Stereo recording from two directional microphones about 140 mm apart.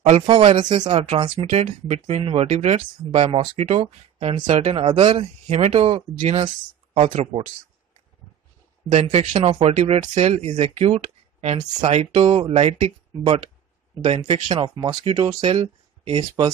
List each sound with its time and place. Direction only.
0.3 s speech: 40° right (ahead or behind)
8.8 s speech: 50° right (ahead or behind)